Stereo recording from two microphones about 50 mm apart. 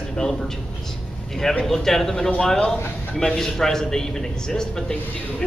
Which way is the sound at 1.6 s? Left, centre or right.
Centre.